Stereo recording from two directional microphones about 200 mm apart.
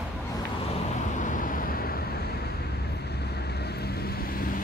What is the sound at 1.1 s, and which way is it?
Vehicle, 40° left (ahead or behind).